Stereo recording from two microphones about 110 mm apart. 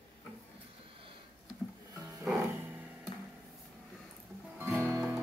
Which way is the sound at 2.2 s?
15° right (ahead or behind).